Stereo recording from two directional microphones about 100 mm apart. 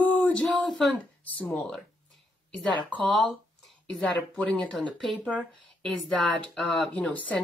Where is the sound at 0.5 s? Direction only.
5° left (ahead or behind).